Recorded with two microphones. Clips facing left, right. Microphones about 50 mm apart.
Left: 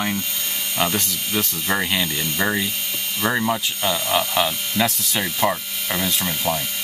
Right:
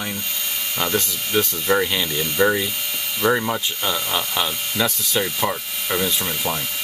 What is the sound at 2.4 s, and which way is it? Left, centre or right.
Ratchet, centre.